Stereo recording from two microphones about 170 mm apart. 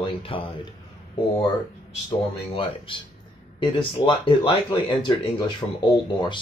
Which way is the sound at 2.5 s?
30° left (ahead or behind).